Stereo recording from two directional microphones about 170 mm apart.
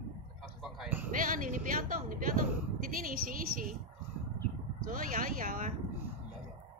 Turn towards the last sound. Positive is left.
turn(degrees=-55)  # may be behind; listen again after turning